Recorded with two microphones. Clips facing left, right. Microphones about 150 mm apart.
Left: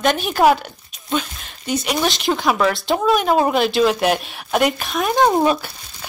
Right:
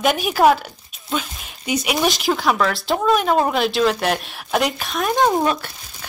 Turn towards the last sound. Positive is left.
turn(degrees=5)  # may be behind; listen again after turning